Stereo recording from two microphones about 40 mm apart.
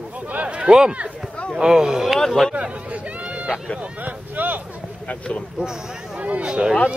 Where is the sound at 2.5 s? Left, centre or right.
Right.